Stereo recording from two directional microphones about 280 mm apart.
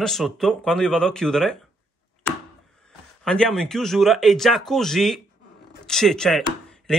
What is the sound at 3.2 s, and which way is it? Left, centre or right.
A man's voice, centre.